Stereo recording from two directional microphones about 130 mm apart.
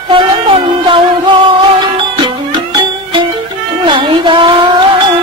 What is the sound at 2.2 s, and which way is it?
Music, 40° right (ahead or behind).